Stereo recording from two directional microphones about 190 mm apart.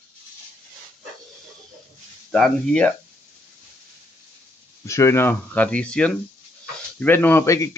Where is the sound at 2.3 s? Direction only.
5° left (ahead or behind).